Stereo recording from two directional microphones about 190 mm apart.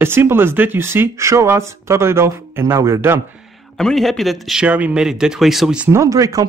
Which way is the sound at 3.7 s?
Centre (ahead or behind).